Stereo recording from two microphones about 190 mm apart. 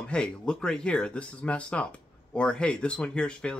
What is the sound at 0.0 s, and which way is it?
Speech, 5° left (ahead or behind).